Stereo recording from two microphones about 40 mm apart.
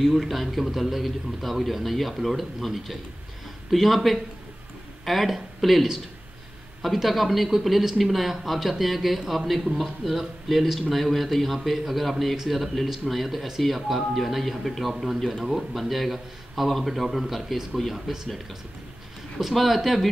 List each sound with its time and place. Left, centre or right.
0.0 s speech: centre
19.4 s speech: centre